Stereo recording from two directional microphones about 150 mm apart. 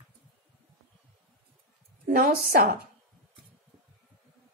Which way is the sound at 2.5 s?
70° right (ahead or behind).